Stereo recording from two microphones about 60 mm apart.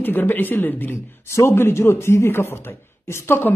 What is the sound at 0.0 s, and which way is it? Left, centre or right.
Speech, left.